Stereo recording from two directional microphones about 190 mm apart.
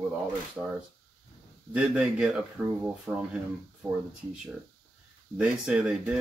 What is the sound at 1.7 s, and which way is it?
Speech, 5° right (ahead or behind).